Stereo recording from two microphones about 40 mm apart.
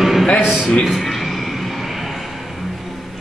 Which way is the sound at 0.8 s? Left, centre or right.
Centre.